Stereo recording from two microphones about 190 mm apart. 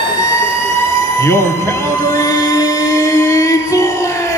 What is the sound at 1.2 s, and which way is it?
Train, 15° left (ahead or behind).